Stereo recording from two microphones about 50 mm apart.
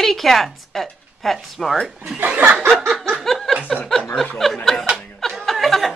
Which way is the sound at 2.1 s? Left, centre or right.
Right.